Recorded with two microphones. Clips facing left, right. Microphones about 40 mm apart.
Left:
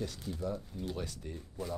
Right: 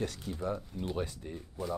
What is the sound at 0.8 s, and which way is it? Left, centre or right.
Speech, right.